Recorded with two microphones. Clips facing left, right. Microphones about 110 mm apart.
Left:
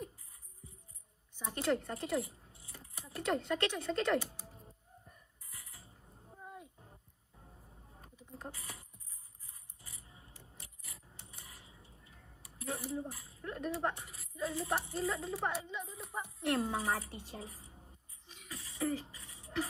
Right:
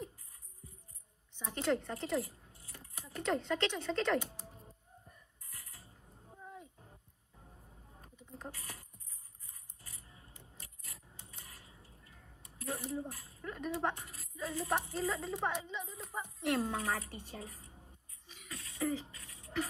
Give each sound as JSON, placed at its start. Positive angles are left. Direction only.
{"t": 1.3, "sound": "a woman's voice", "side_deg": 5}
{"t": 2.6, "sound": "keys jangling", "side_deg": 30}
{"t": 3.2, "sound": "a woman's voice", "side_deg": 5}
{"t": 5.8, "sound": "music", "side_deg": 0}
{"t": 9.8, "sound": "coin", "side_deg": 0}
{"t": 10.0, "sound": "keys jangling", "side_deg": 25}
{"t": 10.8, "sound": "a sound", "side_deg": 0}